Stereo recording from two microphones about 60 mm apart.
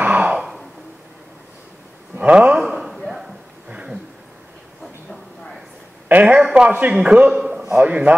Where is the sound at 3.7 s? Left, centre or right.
Centre.